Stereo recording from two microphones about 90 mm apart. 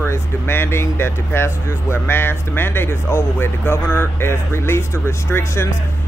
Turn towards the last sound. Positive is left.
turn(degrees=30)  # may be behind; listen again after turning